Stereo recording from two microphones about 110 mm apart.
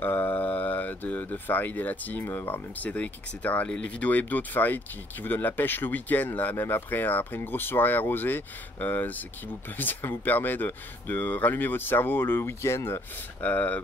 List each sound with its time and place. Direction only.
0.0 s speech: 15° left (ahead or behind)